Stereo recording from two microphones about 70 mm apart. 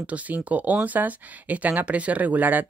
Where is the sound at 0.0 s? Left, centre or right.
Centre.